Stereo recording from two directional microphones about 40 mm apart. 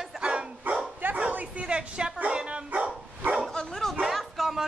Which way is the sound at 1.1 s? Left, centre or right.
Right.